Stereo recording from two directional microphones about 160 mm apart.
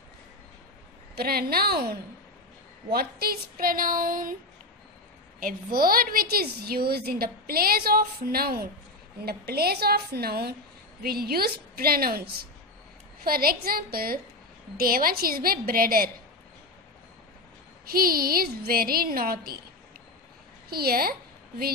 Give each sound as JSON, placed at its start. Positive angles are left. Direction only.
{"t": 1.1, "sound": "a woman's voice", "side_deg": -75}
{"t": 5.4, "sound": "a woman's voice", "side_deg": -65}
{"t": 17.8, "sound": "a woman's voice", "side_deg": -65}
{"t": 20.7, "sound": "a woman's voice", "side_deg": -70}